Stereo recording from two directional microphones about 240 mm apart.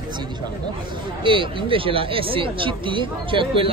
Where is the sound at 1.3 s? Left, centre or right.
Right.